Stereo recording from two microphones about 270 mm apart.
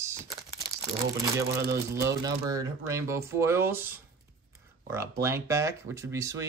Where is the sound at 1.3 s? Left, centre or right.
Centre.